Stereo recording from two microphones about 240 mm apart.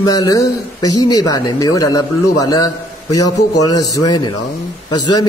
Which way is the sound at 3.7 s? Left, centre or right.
Centre.